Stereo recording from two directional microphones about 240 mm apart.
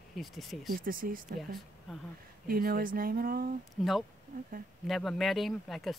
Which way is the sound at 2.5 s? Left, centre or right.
Right.